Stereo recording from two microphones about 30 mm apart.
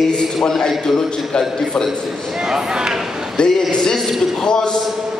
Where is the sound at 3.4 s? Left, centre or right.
Left.